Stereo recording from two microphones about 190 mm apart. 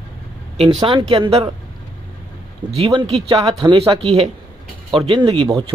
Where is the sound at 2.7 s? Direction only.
30° right (ahead or behind).